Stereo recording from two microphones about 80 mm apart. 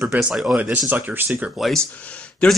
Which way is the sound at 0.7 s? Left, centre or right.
Right.